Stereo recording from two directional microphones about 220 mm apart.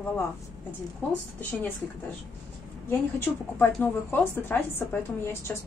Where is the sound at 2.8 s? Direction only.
10° left (ahead or behind).